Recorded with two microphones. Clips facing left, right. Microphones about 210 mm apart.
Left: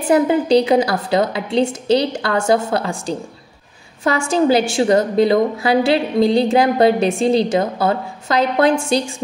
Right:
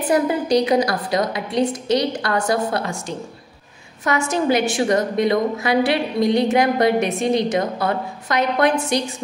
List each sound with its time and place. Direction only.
0.0 s a woman's voice: 25° left (ahead or behind)